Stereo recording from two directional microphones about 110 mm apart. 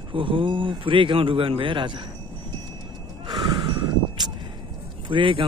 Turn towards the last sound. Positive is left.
turn(degrees=-50)  # may be behind; listen again after turning